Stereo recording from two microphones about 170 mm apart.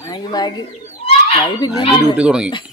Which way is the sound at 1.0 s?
35° left (ahead or behind).